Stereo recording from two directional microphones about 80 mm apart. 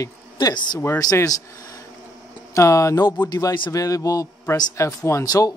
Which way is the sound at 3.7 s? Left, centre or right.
Left.